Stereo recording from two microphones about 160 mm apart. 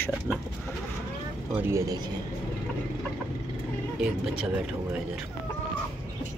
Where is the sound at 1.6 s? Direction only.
20° right (ahead or behind).